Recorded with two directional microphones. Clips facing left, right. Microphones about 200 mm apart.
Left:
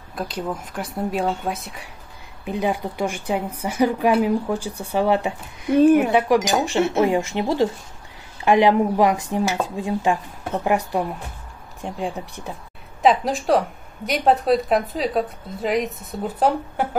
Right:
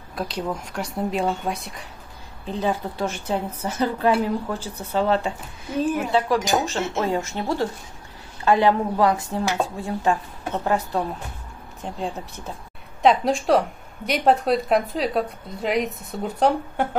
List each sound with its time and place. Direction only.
0.1 s a woman's voice: centre (ahead or behind)
5.7 s speech: 65° left (ahead or behind)
6.1 s a woman's voice: 15° left (ahead or behind)
13.0 s speech: centre (ahead or behind)